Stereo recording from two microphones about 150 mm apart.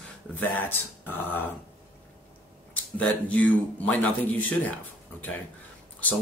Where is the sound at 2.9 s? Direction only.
10° left (ahead or behind).